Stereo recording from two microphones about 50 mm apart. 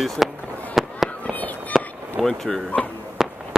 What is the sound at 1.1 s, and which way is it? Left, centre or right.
Fireworks, left.